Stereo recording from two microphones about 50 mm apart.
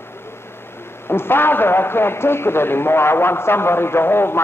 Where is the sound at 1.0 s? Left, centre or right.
Left.